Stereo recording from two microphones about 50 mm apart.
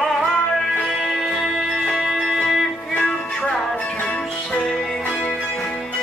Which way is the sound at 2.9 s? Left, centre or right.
Left.